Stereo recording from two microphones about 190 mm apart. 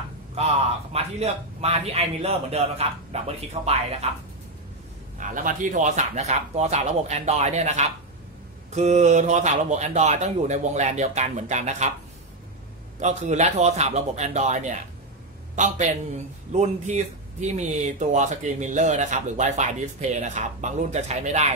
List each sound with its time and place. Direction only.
0.9 s speech: 35° right (ahead or behind)
5.3 s speech: 45° right (ahead or behind)
13.0 s a man's voice: 35° right (ahead or behind)